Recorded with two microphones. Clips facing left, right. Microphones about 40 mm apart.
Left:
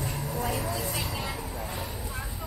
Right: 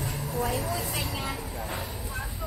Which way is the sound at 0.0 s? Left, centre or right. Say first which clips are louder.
Right 1 dB; centre.